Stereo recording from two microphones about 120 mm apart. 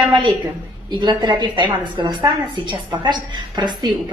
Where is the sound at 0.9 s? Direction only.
40° right (ahead or behind).